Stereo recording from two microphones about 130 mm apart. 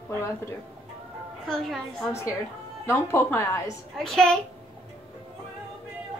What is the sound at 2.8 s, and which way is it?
Speech, 20° left (ahead or behind).